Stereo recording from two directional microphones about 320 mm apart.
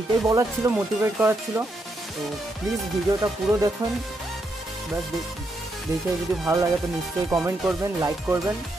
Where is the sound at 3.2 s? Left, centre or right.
Centre.